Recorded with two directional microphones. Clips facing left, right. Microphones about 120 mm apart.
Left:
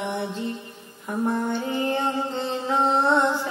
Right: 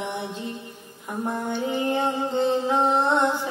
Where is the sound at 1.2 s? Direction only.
15° right (ahead or behind).